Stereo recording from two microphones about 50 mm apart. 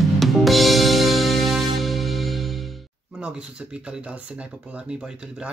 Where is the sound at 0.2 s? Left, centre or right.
Centre.